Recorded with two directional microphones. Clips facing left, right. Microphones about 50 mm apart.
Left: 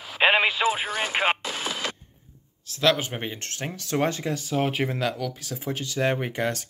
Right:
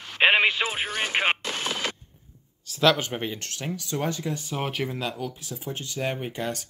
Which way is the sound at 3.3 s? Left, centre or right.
Left.